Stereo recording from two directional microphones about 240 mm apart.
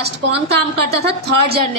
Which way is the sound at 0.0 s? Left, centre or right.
Right.